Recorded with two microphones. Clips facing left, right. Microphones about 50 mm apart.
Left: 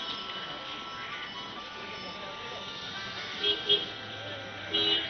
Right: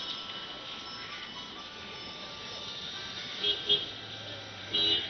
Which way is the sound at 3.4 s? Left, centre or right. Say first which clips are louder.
Left 2 dB; centre.